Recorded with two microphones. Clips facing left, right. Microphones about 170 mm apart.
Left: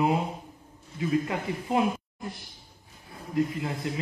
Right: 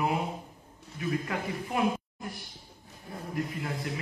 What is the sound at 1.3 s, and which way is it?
Speech, 25° left (ahead or behind).